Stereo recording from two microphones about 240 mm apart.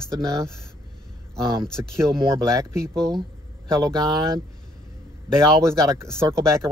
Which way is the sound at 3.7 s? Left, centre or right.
Centre.